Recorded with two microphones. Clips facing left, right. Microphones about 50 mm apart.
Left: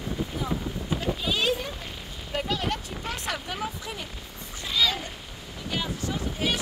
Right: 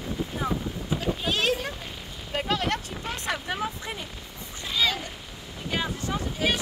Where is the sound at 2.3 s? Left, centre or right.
Right.